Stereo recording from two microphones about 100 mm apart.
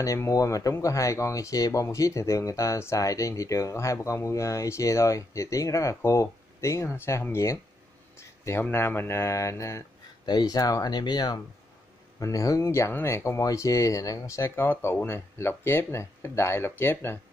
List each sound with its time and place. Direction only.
0.0 s speech: 35° left (ahead or behind)
10.2 s speech: 40° left (ahead or behind); by 17.2 s 25° left (ahead or behind)